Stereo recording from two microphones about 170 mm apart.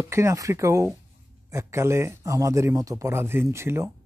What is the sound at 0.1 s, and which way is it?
Speech, 15° right (ahead or behind).